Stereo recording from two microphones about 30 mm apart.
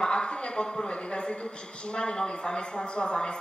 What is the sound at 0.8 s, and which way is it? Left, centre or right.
A man's voice, left.